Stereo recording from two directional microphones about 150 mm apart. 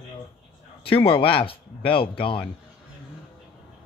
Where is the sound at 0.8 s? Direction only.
35° left (ahead or behind).